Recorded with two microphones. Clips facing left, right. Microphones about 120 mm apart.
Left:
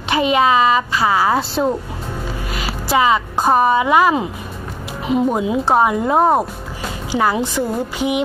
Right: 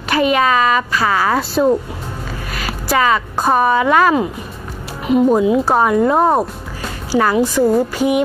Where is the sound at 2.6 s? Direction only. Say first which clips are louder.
Even; 20° left (ahead or behind).